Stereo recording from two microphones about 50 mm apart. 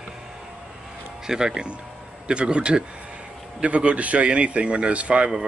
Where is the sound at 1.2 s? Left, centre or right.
Centre.